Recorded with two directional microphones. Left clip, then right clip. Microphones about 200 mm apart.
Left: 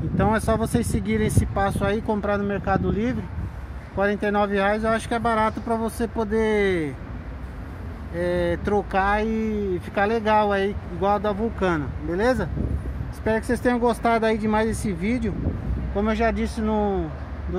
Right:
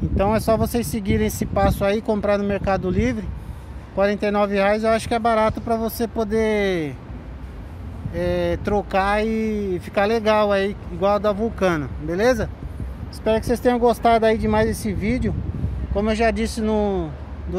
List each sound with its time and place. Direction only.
0.2 s speech: 20° right (ahead or behind)
8.2 s speech: 25° right (ahead or behind)